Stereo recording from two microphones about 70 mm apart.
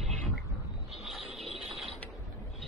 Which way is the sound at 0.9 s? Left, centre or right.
Centre.